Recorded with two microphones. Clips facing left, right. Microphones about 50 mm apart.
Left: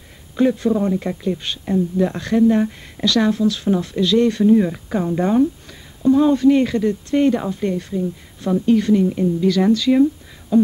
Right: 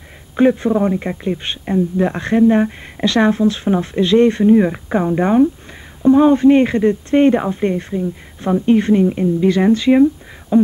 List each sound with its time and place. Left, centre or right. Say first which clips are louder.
0.4 s a woman's voice: right 3 dB; right
10.5 s beatboxing: right 2 dB; right